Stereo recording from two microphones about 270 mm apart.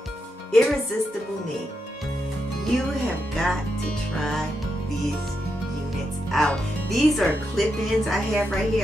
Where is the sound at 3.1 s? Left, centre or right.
Centre.